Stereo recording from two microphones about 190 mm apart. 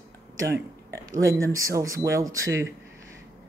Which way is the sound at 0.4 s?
15° right (ahead or behind).